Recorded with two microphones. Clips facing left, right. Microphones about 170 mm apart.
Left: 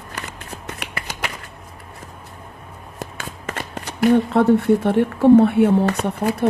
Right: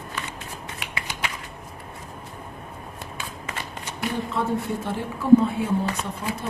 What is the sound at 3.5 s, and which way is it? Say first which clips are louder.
A woman's voice: left 7 dB; 60° left (ahead or behind).